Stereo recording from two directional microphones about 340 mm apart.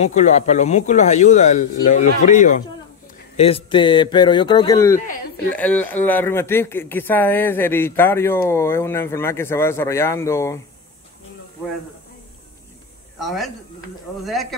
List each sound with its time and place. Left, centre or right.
0.0 s speech: left
4.9 s speech: left
5.5 s speech: centre
13.2 s a man's voice: centre